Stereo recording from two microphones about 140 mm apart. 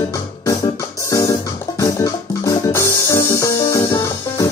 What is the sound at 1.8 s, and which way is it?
Music, 25° left (ahead or behind).